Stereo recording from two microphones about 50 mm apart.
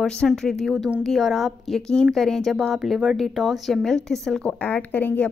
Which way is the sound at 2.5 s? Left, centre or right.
Centre.